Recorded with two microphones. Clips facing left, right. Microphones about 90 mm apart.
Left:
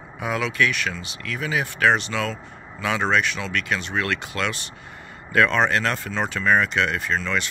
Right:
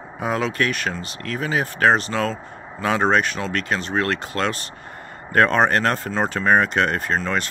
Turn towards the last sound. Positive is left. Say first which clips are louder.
# right 2 dB
turn(degrees=-40)  # may be behind; listen again after turning